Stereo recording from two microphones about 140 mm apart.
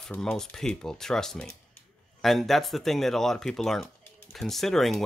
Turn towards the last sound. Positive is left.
turn(degrees=0)  # may be behind; listen again after turning